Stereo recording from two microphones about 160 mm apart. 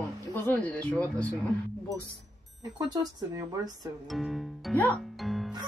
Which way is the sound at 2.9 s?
25° right (ahead or behind).